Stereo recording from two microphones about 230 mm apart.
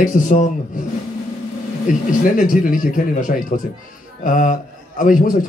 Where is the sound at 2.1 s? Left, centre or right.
Left.